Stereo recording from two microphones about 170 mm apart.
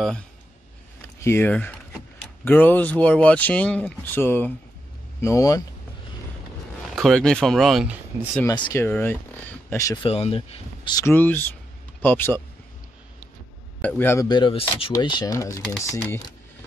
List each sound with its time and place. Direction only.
1.2 s speech: 15° left (ahead or behind)
7.0 s speech: 5° left (ahead or behind)
8.5 s speech: 20° left (ahead or behind)
10.0 s speech: 35° left (ahead or behind)
11.1 s speech: 10° left (ahead or behind)
13.7 s a man's voice: 10° left (ahead or behind)
14.2 s speech: 25° left (ahead or behind)